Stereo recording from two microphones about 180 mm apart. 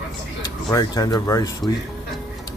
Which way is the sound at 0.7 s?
20° left (ahead or behind).